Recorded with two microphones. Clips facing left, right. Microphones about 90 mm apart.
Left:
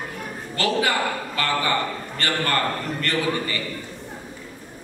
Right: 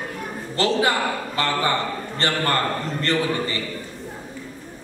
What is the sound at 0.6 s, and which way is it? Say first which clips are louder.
Speech: right 2 dB; 25° right (ahead or behind).